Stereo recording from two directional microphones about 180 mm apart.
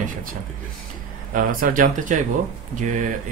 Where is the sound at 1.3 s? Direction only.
50° right (ahead or behind).